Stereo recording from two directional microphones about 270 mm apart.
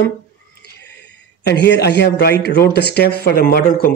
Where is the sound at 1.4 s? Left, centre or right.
Left.